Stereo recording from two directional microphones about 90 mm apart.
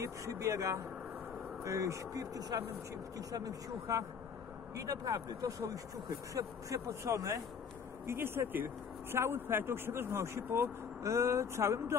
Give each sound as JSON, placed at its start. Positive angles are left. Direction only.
{"t": 0.0, "sound": "speech", "side_deg": -35}